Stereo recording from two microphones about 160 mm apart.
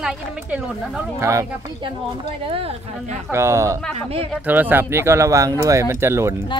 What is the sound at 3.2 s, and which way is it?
Speech, 15° right (ahead or behind).